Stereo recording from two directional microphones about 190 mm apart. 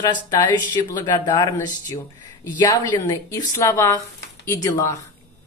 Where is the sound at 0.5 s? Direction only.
20° left (ahead or behind).